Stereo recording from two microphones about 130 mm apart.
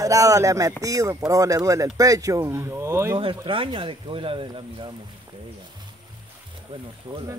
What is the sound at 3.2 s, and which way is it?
Speech, 40° right (ahead or behind).